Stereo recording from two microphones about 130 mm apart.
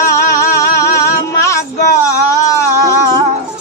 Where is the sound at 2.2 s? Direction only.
25° left (ahead or behind).